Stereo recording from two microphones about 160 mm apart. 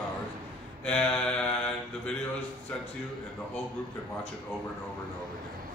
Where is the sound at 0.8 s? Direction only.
5° left (ahead or behind).